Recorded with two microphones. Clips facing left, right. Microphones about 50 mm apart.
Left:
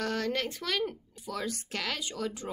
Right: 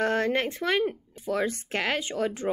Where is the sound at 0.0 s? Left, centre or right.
Right.